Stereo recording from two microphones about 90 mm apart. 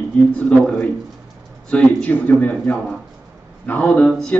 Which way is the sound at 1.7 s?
10° left (ahead or behind).